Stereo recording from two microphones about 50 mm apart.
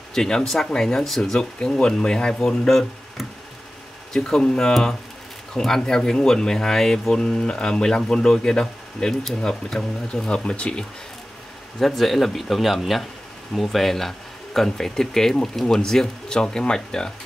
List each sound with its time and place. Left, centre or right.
0.1 s speech: centre
1.4 s speech: centre
4.1 s speech: centre
11.8 s speech: centre